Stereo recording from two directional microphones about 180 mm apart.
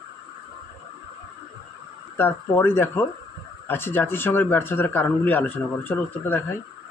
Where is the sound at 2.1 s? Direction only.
10° left (ahead or behind).